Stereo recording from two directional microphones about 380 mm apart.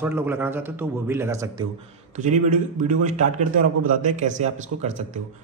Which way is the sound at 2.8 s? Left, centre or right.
Centre.